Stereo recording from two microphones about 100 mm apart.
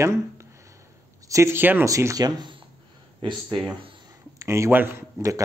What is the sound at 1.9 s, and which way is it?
Speech, 30° right (ahead or behind).